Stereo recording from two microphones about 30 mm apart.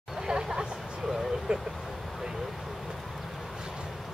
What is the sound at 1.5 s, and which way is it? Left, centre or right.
Speech, right.